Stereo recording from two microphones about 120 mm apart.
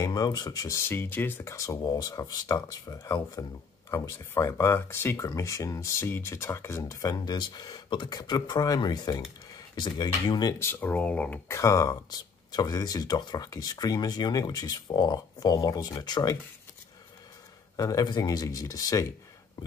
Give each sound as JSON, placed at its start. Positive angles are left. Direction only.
{"t": 0.0, "sound": "speech", "side_deg": 35}
{"t": 0.8, "sound": "speech", "side_deg": 20}
{"t": 10.6, "sound": "speech", "side_deg": 15}
{"t": 17.7, "sound": "speech", "side_deg": 30}